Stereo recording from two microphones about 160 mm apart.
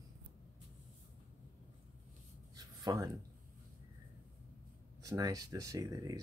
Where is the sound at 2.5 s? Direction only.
25° right (ahead or behind).